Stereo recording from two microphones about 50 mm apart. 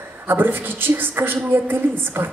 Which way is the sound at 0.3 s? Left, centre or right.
Right.